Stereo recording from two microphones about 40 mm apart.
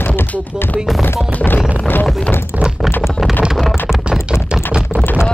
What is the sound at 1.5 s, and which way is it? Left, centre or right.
Music, left.